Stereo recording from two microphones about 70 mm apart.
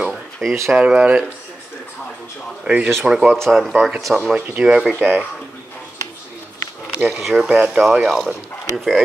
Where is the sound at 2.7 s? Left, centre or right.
Right.